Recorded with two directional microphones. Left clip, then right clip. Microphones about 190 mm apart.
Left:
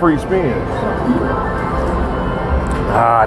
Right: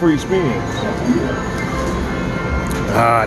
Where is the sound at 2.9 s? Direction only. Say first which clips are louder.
Left 2 dB; 35° right (ahead or behind).